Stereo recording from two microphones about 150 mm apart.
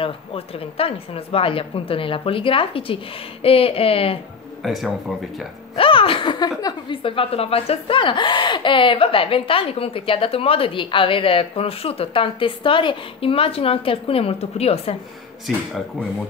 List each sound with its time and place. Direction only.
0.0 s speech: 40° left (ahead or behind)
4.6 s speech: centre (ahead or behind)
5.8 s a sound: 35° left (ahead or behind)
6.6 s speech: 35° left (ahead or behind)
15.5 s speech: centre (ahead or behind)